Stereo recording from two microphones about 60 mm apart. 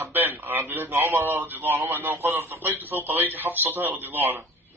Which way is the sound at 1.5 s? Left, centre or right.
Right.